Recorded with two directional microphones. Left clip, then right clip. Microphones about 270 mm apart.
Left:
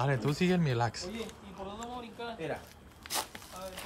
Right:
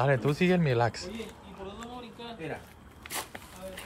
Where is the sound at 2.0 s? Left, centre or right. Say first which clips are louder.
Left 2 dB; left.